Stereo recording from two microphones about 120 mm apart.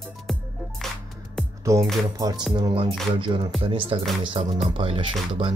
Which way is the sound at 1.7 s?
25° right (ahead or behind).